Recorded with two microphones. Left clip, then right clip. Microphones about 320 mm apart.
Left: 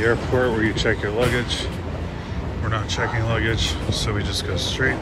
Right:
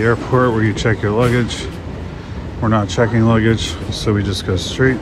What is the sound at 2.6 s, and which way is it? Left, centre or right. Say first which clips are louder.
Speech: right 8 dB; centre.